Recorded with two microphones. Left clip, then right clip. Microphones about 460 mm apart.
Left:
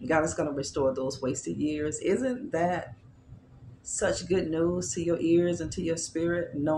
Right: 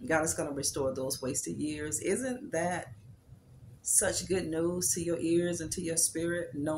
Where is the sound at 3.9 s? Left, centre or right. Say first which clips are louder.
Left 4 dB; right.